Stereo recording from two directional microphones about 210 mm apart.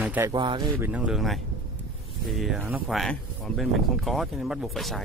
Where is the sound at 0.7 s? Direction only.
10° right (ahead or behind).